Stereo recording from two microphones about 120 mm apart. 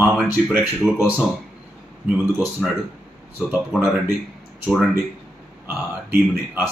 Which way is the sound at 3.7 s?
5° right (ahead or behind).